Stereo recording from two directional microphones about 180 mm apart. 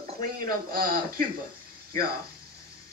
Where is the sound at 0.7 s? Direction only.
55° right (ahead or behind).